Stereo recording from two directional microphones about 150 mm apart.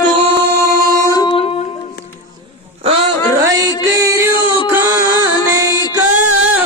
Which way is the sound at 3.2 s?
30° left (ahead or behind).